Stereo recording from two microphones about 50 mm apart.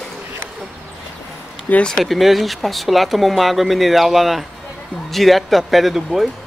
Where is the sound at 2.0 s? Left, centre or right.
Centre.